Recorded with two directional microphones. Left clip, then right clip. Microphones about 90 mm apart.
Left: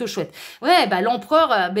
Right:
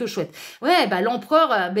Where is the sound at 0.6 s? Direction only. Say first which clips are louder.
Left 2 dB; 5° left (ahead or behind).